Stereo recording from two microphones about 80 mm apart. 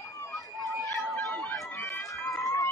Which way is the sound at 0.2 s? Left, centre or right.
Left.